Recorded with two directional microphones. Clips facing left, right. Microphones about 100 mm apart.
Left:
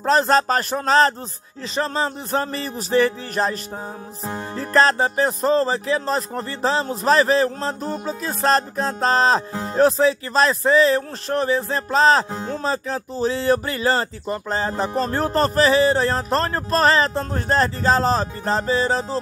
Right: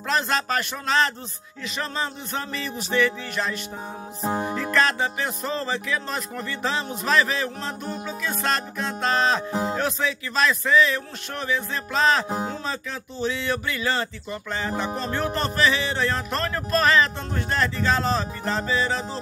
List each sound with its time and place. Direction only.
0.0 s speech: 35° left (ahead or behind)
4.3 s music: 20° right (ahead or behind)
4.6 s speech: 35° left (ahead or behind)
9.5 s music: 15° right (ahead or behind)
9.8 s speech: 35° left (ahead or behind)
12.3 s speech: 20° right (ahead or behind)
12.6 s speech: 35° left (ahead or behind)